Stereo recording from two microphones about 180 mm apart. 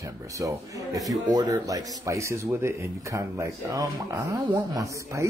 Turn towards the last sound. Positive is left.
turn(degrees=-20)  # may be behind; listen again after turning